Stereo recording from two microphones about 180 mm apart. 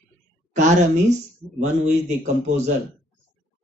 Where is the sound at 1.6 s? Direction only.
40° right (ahead or behind).